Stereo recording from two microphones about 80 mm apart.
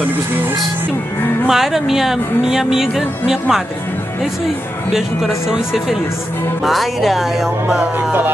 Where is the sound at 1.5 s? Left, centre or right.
Centre.